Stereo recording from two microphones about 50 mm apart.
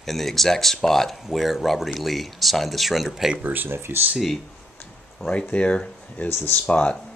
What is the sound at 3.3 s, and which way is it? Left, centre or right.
Speech, right.